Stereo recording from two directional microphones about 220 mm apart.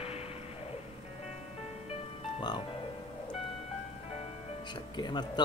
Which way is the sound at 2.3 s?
20° left (ahead or behind).